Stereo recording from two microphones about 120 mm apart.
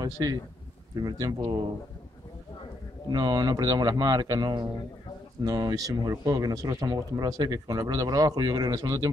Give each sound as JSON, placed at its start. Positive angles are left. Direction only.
{"t": 0.0, "sound": "speech", "side_deg": -35}
{"t": 3.1, "sound": "speech", "side_deg": -35}